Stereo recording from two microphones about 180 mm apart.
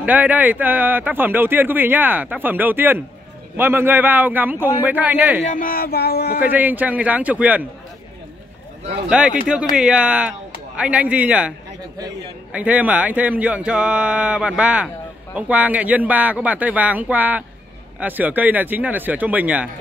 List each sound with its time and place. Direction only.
0.0 s speech: 10° right (ahead or behind)
5.4 s speech: 50° left (ahead or behind)
6.4 s speech: 10° right (ahead or behind)
9.1 s speech: 5° right (ahead or behind)
12.5 s speech: 10° right (ahead or behind)